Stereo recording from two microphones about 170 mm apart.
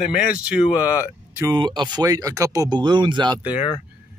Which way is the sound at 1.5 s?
25° right (ahead or behind).